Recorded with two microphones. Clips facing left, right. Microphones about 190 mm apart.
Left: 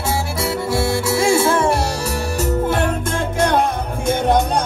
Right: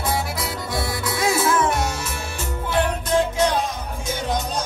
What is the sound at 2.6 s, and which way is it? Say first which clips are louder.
Music: left 4 dB; 50° left (ahead or behind).